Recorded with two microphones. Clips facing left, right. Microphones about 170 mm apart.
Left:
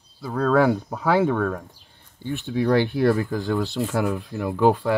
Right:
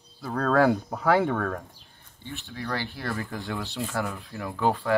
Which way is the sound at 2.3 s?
20° left (ahead or behind).